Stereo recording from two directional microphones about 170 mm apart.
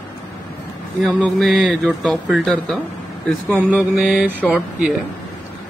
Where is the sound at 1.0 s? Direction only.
Centre (ahead or behind).